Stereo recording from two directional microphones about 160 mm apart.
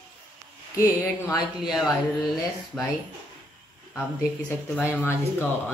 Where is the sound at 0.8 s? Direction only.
20° left (ahead or behind).